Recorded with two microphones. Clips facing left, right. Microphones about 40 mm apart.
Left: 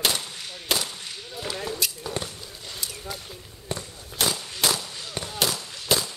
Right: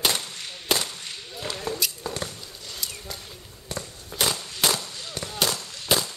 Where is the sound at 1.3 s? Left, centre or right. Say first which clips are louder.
Even; centre.